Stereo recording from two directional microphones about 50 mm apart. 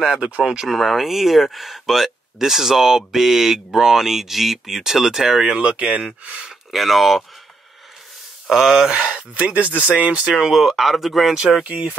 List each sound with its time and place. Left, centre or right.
0.0 s speech: centre
0.7 s speech: centre
5.5 s speech: right
6.7 s speech: centre
8.5 s speech: centre
10.5 s speech: centre